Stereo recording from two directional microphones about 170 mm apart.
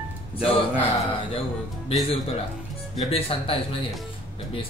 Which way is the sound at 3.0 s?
35° left (ahead or behind).